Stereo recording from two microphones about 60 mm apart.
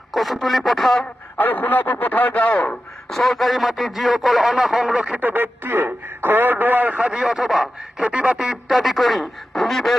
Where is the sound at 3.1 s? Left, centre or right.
Centre.